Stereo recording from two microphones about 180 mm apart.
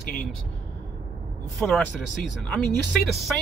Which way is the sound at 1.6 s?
5° left (ahead or behind).